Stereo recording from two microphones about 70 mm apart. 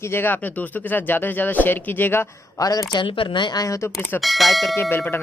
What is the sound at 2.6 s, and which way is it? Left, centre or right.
Speech, left.